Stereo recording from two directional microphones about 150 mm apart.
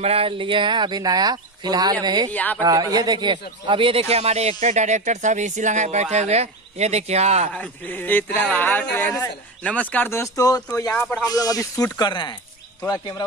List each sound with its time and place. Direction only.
0.0 s speech: 40° right (ahead or behind)
2.3 s speech: 10° left (ahead or behind)
2.6 s speech: 25° right (ahead or behind); by 7.5 s 45° right (ahead or behind)
7.5 s speech: 10° left (ahead or behind)
11.0 s speech: 10° left (ahead or behind)
11.2 s speech: 25° left (ahead or behind)